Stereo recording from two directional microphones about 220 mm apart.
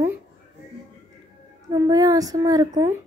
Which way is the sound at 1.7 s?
15° right (ahead or behind).